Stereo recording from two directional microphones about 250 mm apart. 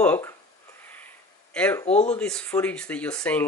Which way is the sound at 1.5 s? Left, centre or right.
Centre.